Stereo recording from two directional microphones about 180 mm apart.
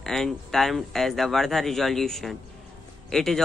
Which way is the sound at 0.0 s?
Centre (ahead or behind).